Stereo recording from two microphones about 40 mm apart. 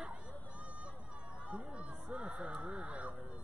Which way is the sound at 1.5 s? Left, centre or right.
Right.